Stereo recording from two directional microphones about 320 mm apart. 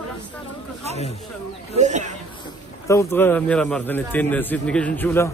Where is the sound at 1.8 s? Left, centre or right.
Right.